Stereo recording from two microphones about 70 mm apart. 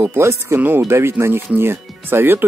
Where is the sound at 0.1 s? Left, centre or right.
Right.